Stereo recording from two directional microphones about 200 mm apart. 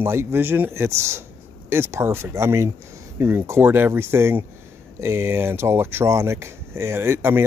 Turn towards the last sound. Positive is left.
turn(degrees=-10)  # may be behind; listen again after turning